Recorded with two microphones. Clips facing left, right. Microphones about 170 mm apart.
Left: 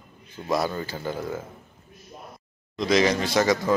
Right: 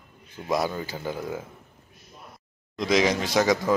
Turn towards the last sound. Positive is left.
turn(degrees=-5)  # may be behind; listen again after turning